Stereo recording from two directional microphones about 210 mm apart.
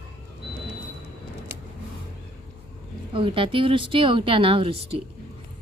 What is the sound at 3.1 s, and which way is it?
Speech, 25° right (ahead or behind).